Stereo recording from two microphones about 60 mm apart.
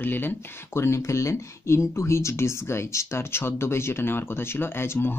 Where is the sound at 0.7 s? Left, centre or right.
Left.